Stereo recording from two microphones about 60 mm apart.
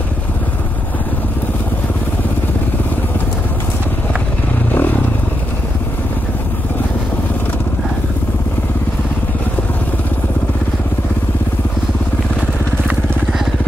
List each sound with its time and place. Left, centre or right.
4.7 s vehicle: left